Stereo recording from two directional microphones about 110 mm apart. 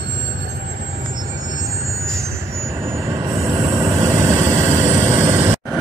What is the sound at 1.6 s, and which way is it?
Train, 30° right (ahead or behind).